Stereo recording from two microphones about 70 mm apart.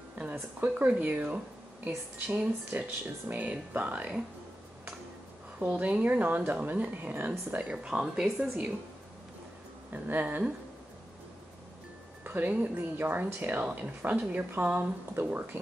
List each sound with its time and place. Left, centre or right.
0.2 s speech: right
5.8 s speech: right
9.9 s speech: right
12.2 s speech: right